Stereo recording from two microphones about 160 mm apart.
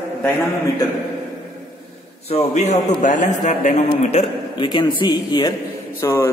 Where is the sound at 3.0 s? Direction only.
55° left (ahead or behind).